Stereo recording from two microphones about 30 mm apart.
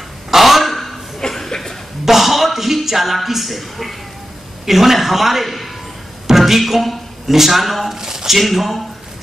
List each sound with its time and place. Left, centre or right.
0.3 s a sound: centre
1.2 s chuckle: left
2.0 s music: centre
3.3 s a man's voice: centre
7.9 s a man's voice: centre
8.4 s a man's voice: centre